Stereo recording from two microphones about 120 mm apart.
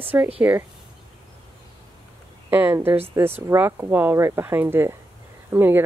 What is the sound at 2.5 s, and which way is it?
Speech, 15° right (ahead or behind).